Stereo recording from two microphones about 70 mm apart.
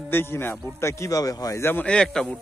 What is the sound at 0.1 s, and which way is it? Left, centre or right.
Speech, left.